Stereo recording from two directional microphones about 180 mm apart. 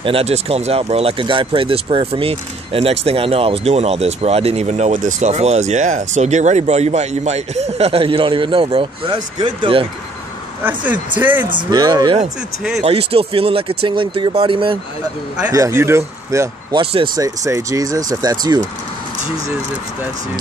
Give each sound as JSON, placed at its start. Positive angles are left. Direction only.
{"t": 0.0, "sound": "speech", "side_deg": -35}
{"t": 10.6, "sound": "speech", "side_deg": -10}
{"t": 11.5, "sound": "speech", "side_deg": -25}
{"t": 15.4, "sound": "speech", "side_deg": -15}
{"t": 16.8, "sound": "speech", "side_deg": -30}
{"t": 17.2, "sound": "speech", "side_deg": -15}